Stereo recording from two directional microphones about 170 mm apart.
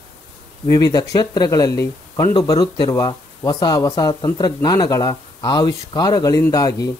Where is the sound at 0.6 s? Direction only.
20° left (ahead or behind).